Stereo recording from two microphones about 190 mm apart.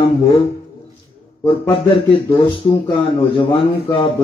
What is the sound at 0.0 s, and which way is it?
Speech, 30° left (ahead or behind).